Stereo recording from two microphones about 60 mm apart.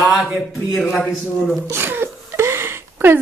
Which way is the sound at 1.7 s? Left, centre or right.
Right.